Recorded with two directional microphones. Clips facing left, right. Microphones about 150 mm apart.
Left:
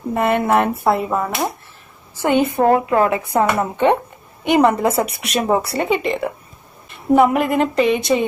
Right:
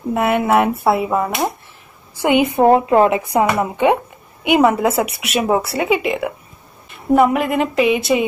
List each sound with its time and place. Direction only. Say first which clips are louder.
0.1 s speech: right 1 dB; 5° right (ahead or behind)
3.4 s speech: even; 10° right (ahead or behind)